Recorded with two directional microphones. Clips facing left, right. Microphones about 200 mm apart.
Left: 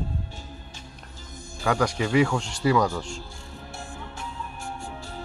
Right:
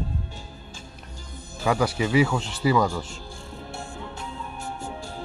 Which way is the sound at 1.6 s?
5° right (ahead or behind).